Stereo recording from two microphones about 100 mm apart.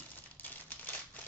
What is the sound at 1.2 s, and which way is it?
Typewriter, 15° left (ahead or behind).